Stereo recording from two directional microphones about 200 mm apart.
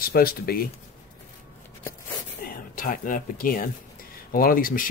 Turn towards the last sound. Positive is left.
turn(degrees=45)  # may be behind; listen again after turning